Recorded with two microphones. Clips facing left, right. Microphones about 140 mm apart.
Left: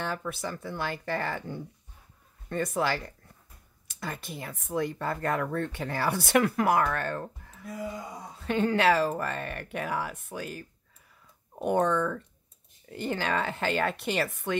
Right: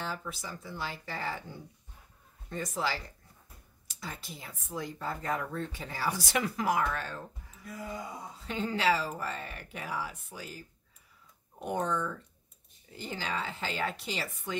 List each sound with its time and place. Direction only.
0.0 s speech: 60° left (ahead or behind)